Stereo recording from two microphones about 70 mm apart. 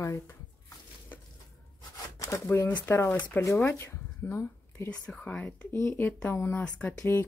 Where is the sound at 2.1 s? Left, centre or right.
Left.